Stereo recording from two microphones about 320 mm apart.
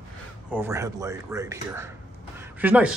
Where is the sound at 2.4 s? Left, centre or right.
Centre.